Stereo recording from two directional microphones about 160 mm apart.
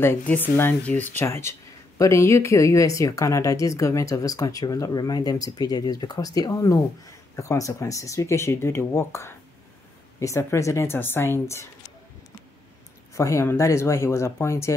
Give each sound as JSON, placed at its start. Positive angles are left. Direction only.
{"t": 0.0, "sound": "speech", "side_deg": 10}
{"t": 13.1, "sound": "speech", "side_deg": 15}